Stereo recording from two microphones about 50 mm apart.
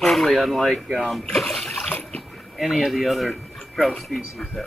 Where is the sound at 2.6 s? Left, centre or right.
Centre.